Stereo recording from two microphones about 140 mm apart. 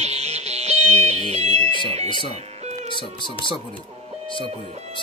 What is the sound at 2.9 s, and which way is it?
Speech, 35° left (ahead or behind).